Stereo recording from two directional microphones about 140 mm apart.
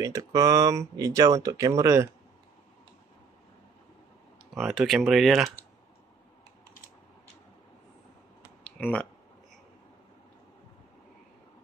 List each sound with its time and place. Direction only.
0.0 s speech: 25° right (ahead or behind)
4.6 s speech: centre (ahead or behind)
8.6 s a sound: 10° left (ahead or behind)